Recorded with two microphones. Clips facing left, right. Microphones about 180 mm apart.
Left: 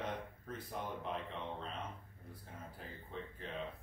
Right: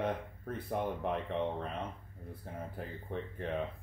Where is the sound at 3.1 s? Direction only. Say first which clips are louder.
Right 9 dB; 60° right (ahead or behind).